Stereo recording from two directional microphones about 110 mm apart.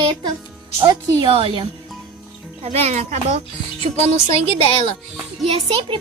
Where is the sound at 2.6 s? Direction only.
75° right (ahead or behind); by 3.3 s 90° right.